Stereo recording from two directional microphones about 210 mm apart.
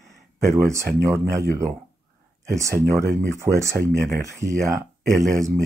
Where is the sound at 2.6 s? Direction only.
15° right (ahead or behind).